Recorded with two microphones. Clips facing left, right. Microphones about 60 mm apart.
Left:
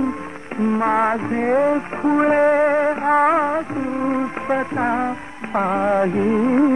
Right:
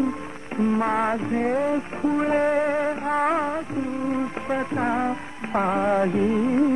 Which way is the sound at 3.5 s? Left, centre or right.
Left.